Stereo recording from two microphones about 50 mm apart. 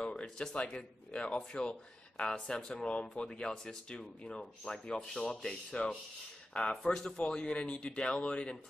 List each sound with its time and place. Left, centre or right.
0.0 s speech: centre